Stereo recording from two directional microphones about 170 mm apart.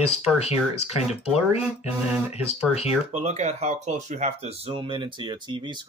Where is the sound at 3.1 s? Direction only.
40° right (ahead or behind).